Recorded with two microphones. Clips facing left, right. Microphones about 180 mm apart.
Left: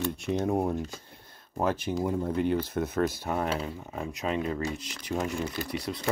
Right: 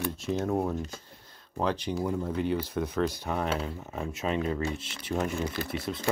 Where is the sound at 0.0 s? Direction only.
10° right (ahead or behind).